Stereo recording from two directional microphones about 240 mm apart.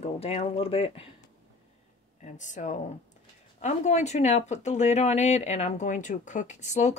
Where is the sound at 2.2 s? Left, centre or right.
Left.